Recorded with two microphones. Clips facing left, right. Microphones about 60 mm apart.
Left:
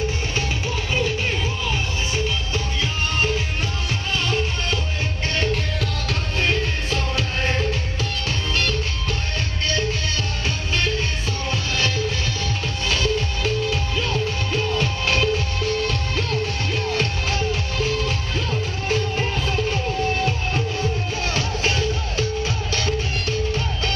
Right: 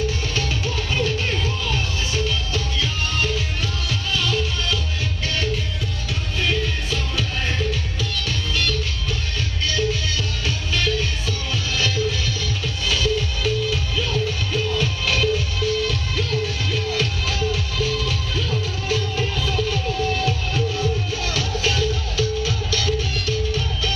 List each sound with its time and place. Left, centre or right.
0.4 s music: centre; by 8.1 s left
10.7 s music: left